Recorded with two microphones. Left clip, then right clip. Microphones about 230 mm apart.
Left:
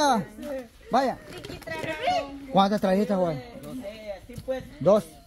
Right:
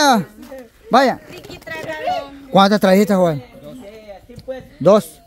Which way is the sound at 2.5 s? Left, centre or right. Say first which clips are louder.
Right 10 dB; right.